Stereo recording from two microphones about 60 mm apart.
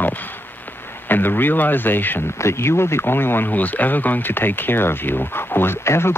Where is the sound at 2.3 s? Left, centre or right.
Left.